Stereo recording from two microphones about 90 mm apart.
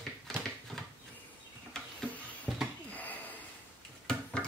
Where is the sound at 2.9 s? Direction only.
20° left (ahead or behind).